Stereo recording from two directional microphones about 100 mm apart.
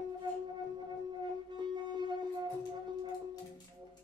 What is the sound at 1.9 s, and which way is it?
Music, 45° right (ahead or behind).